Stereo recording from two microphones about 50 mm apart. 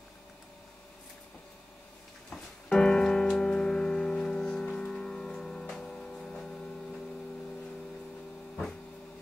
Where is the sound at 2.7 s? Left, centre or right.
Centre.